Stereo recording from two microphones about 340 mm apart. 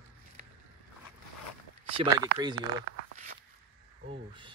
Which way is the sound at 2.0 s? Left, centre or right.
Centre.